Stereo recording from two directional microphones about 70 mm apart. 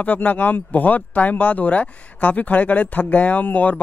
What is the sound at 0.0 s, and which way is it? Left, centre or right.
Speech, left.